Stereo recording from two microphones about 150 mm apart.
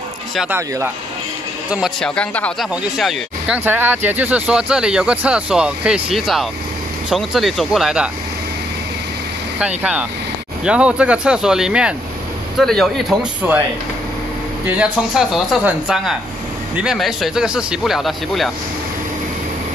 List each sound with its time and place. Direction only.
0.5 s speech: 15° right (ahead or behind)
1.7 s speech: centre (ahead or behind)
2.7 s speech: 5° right (ahead or behind)
9.6 s speech: 10° right (ahead or behind)
14.8 s speech: centre (ahead or behind)